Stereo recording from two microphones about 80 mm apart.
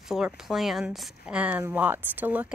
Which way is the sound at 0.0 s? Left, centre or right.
Centre.